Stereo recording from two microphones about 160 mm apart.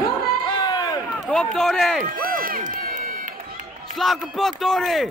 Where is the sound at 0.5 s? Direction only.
25° left (ahead or behind).